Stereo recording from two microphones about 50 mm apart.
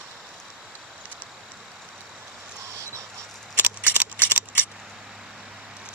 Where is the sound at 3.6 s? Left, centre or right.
Right.